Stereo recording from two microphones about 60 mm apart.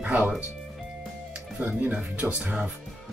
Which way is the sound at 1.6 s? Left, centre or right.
Right.